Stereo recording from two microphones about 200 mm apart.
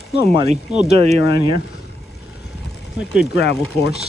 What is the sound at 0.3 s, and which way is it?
Speech, 30° right (ahead or behind).